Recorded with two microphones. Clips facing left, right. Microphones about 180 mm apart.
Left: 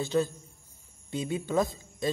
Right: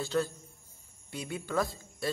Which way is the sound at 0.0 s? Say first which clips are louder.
Left 3 dB; 20° left (ahead or behind).